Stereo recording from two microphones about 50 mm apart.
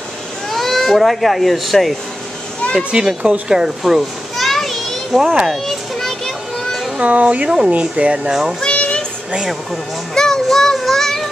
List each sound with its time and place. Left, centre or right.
0.5 s speech: centre
2.9 s speech: centre
4.4 s children playing: centre
5.2 s speech: centre
5.5 s children playing: centre
7.0 s speech: right
8.6 s child singing: left
10.1 s child singing: centre